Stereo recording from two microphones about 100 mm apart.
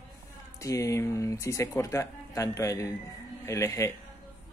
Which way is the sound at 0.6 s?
30° left (ahead or behind).